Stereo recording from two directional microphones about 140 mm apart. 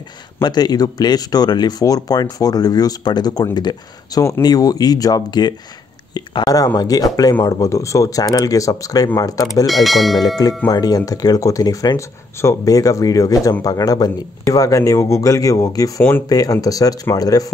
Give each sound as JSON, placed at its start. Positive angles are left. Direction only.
{"t": 0.4, "sound": "speech", "side_deg": 30}
{"t": 9.7, "sound": "speech", "side_deg": 0}
{"t": 10.1, "sound": "speech", "side_deg": 30}
{"t": 16.0, "sound": "speech", "side_deg": 15}
{"t": 16.3, "sound": "speech", "side_deg": 25}